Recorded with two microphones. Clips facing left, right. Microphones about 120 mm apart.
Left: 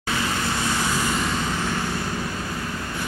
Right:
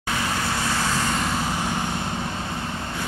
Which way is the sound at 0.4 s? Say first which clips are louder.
Even; 25° right (ahead or behind).